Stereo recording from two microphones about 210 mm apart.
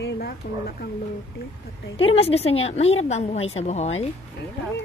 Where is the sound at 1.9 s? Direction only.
25° left (ahead or behind).